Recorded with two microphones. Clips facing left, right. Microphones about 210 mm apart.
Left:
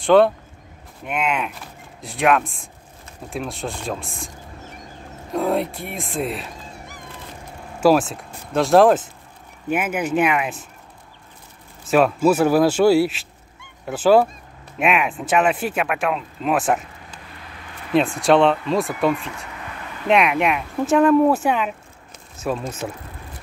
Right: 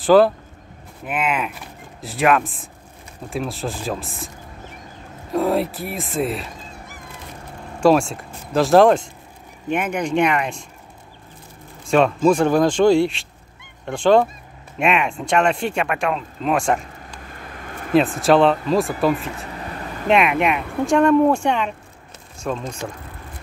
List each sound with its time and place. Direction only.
0.0 s speech: centre (ahead or behind)
5.3 s speech: centre (ahead or behind)
11.9 s speech: 5° left (ahead or behind)
17.3 s vehicle: 50° right (ahead or behind)
17.9 s speech: centre (ahead or behind)
19.1 s vehicle: 35° right (ahead or behind)
20.1 s speech: centre (ahead or behind)